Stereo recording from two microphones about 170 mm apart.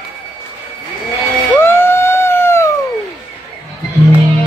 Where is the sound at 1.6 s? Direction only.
15° left (ahead or behind).